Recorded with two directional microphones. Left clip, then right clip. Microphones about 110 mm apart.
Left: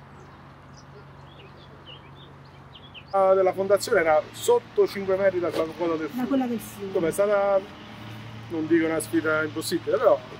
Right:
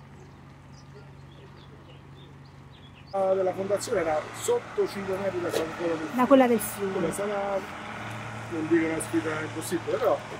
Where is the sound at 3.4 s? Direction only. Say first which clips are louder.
Left 6 dB; 25° right (ahead or behind).